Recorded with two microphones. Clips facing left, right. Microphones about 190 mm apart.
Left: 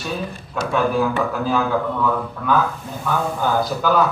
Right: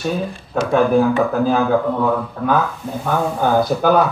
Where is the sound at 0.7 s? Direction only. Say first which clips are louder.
Right 5 dB; 45° right (ahead or behind).